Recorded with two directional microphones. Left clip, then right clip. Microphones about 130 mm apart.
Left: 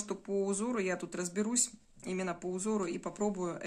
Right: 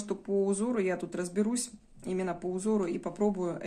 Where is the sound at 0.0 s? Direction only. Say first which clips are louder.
Right 4 dB; 25° left (ahead or behind).